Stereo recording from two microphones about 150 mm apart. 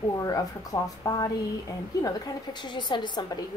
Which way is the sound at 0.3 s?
25° left (ahead or behind).